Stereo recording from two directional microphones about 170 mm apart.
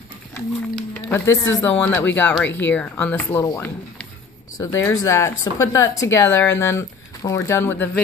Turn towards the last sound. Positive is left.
turn(degrees=15)  # may be behind; listen again after turning